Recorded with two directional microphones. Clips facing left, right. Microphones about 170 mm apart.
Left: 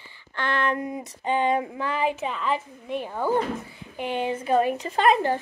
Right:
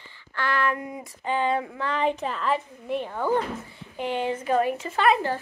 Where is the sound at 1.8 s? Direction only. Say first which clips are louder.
Even; 10° left (ahead or behind).